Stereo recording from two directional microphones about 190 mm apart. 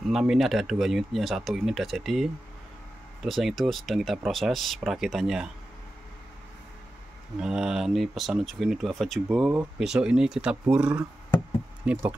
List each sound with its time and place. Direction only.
0.1 s speech: centre (ahead or behind)
7.3 s speech: 5° right (ahead or behind)